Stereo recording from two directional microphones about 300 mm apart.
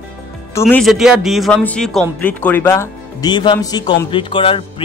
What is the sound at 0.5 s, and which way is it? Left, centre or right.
Speech, centre.